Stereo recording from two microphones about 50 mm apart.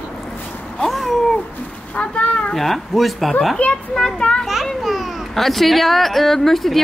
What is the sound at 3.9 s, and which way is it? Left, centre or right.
Speech, centre.